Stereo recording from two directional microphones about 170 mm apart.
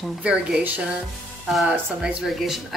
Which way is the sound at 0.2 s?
5° right (ahead or behind).